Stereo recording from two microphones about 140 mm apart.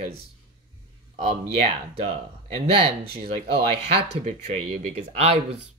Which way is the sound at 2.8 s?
40° right (ahead or behind).